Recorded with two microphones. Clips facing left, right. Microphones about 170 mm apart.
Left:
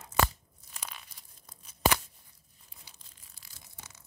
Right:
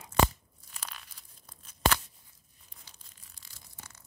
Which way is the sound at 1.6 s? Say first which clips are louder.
Left 1 dB; 10° left (ahead or behind).